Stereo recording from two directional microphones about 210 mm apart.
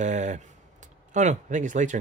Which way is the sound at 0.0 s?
35° right (ahead or behind).